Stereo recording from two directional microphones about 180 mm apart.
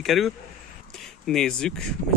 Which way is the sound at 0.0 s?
Centre (ahead or behind).